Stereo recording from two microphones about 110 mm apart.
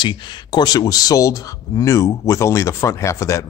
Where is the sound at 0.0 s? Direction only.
45° left (ahead or behind).